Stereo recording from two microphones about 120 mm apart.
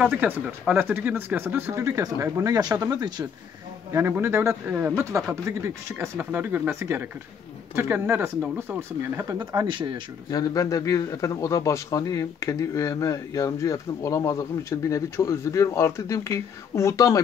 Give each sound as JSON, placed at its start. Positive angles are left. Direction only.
{"t": 0.1, "sound": "speech", "side_deg": -15}
{"t": 3.9, "sound": "speech", "side_deg": -20}
{"t": 5.1, "sound": "speech", "side_deg": -25}
{"t": 9.4, "sound": "speech", "side_deg": -40}
{"t": 10.3, "sound": "a man's voice", "side_deg": 30}